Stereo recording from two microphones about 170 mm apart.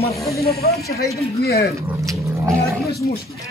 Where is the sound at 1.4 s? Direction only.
65° left (ahead or behind).